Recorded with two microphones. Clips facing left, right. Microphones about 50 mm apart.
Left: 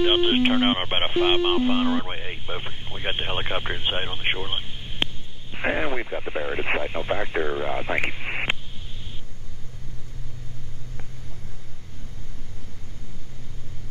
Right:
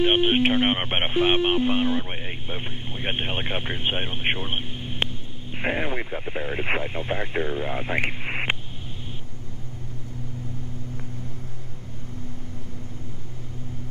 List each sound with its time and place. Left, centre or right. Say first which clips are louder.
0.0 s speech: even; centre
5.6 s speech: left 1 dB; centre